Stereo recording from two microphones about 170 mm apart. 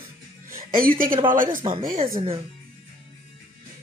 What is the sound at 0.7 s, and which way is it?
Speech, 55° right (ahead or behind).